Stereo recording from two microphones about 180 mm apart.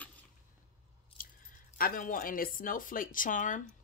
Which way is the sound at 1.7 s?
50° left (ahead or behind).